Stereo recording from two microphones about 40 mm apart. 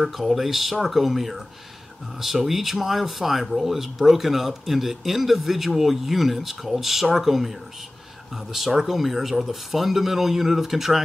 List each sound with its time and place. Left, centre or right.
0.0 s speech: centre